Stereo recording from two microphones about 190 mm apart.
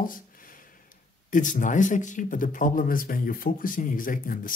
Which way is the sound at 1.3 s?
40° left (ahead or behind).